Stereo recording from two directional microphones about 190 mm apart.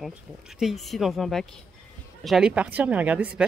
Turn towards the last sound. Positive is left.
turn(degrees=-10)  # may be behind; listen again after turning